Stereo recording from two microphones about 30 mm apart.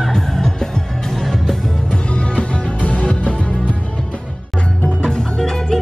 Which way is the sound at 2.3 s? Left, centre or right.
Left.